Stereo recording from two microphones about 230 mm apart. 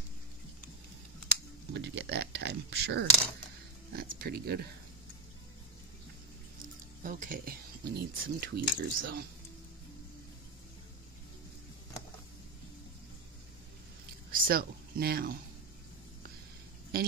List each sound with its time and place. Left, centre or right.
1.7 s speech: right
7.0 s speech: right
14.3 s speech: right